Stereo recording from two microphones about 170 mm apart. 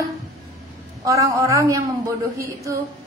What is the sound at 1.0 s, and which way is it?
Speech, 20° right (ahead or behind).